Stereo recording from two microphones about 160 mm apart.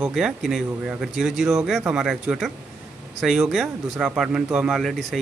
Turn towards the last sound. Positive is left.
turn(degrees=0)  # may be behind; listen again after turning